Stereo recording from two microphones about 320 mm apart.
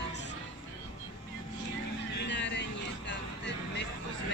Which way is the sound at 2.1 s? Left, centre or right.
Left.